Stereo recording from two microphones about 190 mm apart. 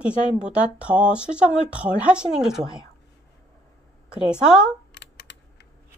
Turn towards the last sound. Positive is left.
turn(degrees=65)  # may be behind; listen again after turning